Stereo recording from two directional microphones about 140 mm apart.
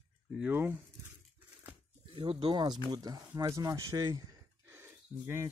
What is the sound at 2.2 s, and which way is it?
Speech, 35° right (ahead or behind).